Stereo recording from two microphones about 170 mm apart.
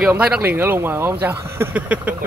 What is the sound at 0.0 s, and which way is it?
Speech, 5° right (ahead or behind).